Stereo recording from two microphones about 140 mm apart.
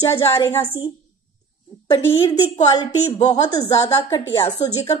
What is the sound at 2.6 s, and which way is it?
Speech, 25° left (ahead or behind).